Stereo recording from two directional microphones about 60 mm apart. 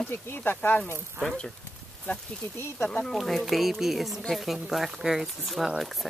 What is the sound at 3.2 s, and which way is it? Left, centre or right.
Speech, centre.